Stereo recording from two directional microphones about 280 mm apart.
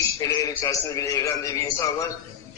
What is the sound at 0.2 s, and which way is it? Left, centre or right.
Speech, centre.